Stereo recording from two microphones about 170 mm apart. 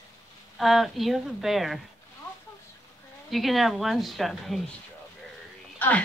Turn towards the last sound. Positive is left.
turn(degrees=10)  # may be behind; listen again after turning